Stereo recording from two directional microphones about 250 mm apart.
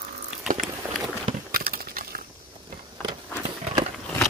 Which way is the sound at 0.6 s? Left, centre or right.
Centre.